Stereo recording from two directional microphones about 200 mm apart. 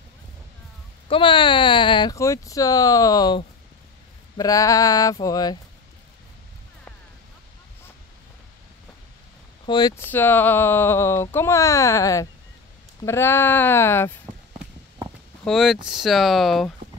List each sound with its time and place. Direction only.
1.0 s speech: 25° left (ahead or behind)
9.7 s speech: 20° left (ahead or behind)
15.4 s speech: centre (ahead or behind)